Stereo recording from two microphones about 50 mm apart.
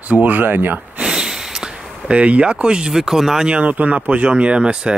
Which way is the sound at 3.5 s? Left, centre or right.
Right.